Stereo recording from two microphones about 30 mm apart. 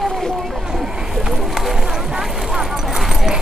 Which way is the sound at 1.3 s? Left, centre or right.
Centre.